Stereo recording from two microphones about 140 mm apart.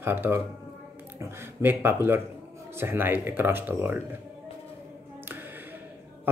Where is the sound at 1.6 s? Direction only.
15° right (ahead or behind).